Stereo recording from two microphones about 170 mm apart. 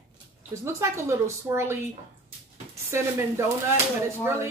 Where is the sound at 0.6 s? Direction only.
15° right (ahead or behind).